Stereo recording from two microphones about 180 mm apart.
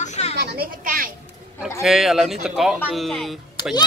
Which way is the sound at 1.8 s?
Centre (ahead or behind).